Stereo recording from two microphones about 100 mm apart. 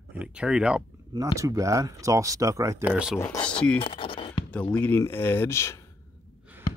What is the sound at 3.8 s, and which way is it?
Scratch, 60° left (ahead or behind).